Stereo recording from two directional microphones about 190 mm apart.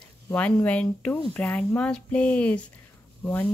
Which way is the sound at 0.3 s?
10° left (ahead or behind).